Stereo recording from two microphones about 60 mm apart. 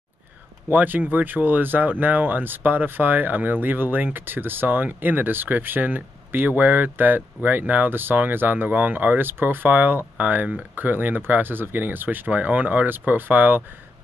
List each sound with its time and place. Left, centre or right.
0.7 s speech: right